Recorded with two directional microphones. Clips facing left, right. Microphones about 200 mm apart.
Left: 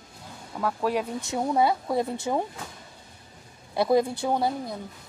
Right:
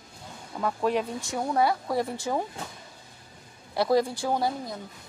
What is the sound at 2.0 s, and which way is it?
Speech, 20° left (ahead or behind).